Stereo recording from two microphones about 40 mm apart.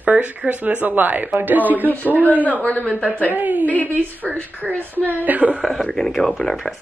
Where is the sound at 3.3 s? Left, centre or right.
Right.